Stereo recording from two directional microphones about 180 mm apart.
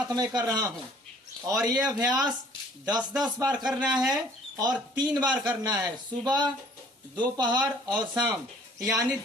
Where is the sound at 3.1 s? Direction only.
5° right (ahead or behind).